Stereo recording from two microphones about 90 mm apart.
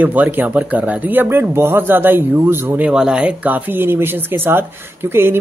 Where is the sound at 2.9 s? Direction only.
10° right (ahead or behind); by 5.4 s 25° right (ahead or behind).